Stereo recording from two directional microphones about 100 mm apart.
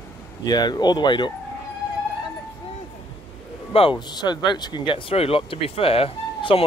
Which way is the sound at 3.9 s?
45° left (ahead or behind).